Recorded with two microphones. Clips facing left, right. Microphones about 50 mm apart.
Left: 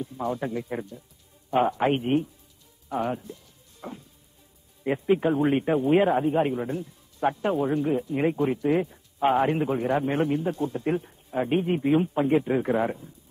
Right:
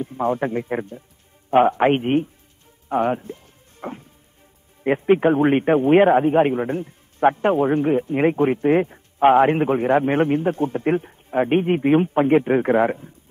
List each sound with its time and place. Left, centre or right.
0.0 s a man's voice: right
2.9 s music: right
4.8 s a man's voice: right